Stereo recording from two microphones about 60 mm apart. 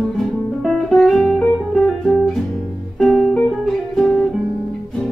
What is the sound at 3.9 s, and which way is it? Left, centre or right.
Guitar, left.